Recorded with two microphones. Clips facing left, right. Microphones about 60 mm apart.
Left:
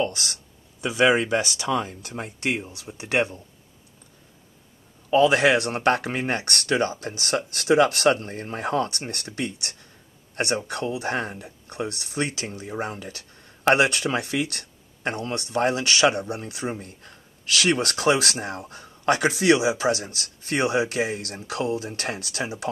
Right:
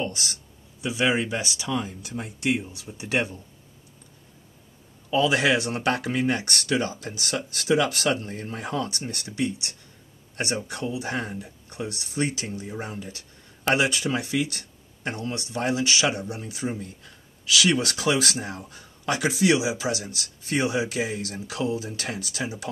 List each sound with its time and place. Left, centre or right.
0.0 s speech: left
5.1 s speech: left